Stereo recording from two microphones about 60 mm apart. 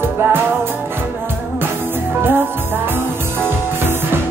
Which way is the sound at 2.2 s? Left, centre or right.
Right.